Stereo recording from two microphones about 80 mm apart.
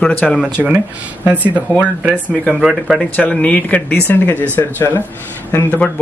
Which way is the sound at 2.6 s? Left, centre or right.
Centre.